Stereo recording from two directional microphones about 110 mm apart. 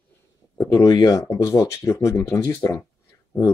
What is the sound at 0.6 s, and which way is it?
Speech, 35° left (ahead or behind).